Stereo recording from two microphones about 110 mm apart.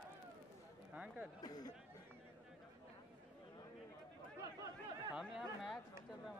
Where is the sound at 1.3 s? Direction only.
35° left (ahead or behind).